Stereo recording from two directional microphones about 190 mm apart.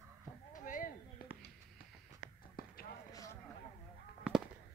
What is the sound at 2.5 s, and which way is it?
Run, 50° left (ahead or behind).